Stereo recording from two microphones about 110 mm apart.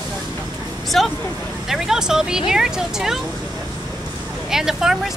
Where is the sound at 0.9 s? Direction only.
5° left (ahead or behind).